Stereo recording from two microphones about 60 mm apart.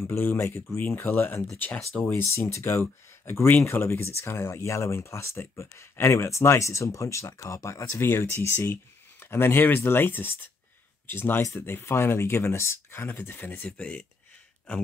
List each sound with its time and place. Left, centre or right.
0.2 s speech: left
13.7 s speech: left